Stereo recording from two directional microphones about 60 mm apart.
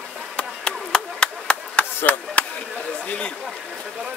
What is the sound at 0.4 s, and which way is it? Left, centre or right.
Chop, centre.